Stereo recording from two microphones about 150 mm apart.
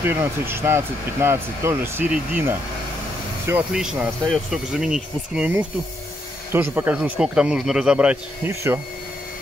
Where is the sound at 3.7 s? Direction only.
5° right (ahead or behind).